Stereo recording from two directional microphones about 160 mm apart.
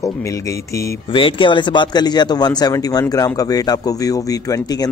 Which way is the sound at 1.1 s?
35° left (ahead or behind).